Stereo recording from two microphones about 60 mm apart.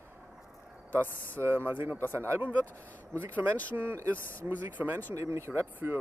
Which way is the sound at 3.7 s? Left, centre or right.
Right.